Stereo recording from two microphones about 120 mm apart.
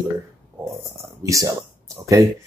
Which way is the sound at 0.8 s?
25° right (ahead or behind).